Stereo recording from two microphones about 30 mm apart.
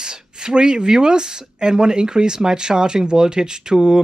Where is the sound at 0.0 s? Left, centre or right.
Right.